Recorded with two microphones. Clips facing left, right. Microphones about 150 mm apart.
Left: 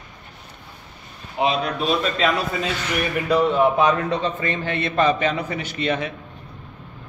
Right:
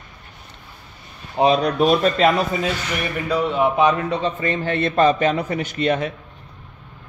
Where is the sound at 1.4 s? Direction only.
40° right (ahead or behind).